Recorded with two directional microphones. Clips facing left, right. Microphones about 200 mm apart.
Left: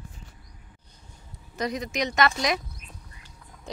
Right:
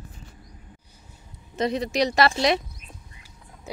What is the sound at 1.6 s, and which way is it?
Speech, 30° right (ahead or behind).